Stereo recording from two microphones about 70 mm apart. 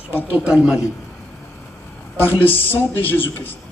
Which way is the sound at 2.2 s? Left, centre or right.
Left.